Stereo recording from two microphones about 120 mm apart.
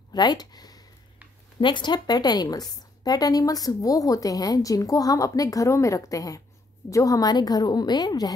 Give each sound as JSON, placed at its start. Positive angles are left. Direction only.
{"t": 0.1, "sound": "a woman's voice", "side_deg": 35}